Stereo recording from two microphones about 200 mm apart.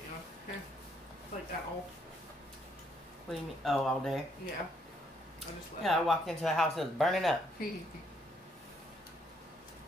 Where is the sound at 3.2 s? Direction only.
Centre (ahead or behind).